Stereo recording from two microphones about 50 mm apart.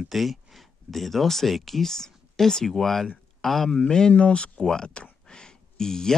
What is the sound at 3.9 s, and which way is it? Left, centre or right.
Speech, centre.